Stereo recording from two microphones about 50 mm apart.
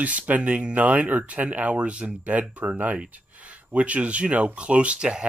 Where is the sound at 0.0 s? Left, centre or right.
Right.